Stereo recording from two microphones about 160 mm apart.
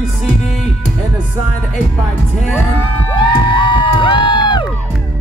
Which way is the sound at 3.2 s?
30° left (ahead or behind).